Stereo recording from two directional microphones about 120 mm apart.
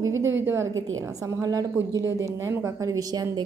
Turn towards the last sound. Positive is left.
turn(degrees=-30)  # may be behind; listen again after turning